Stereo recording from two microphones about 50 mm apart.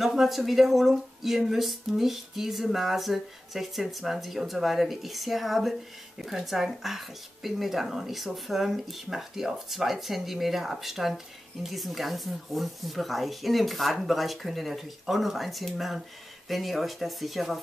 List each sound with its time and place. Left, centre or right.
0.0 s speech: centre